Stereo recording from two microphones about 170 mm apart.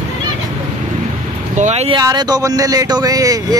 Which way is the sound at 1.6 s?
40° right (ahead or behind).